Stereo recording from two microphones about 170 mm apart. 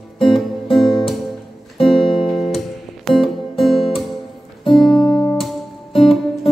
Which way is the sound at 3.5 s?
30° left (ahead or behind).